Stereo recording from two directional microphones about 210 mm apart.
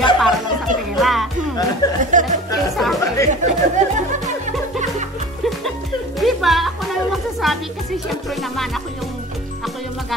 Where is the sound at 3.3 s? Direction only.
35° right (ahead or behind).